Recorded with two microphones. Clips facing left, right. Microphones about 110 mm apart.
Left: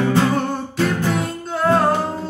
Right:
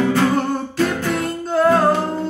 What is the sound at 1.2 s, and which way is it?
Music, centre (ahead or behind).